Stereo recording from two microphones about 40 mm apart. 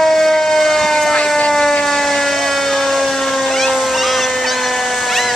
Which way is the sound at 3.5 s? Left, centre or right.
Centre.